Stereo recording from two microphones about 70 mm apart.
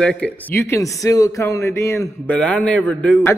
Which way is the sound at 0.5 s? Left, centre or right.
Left.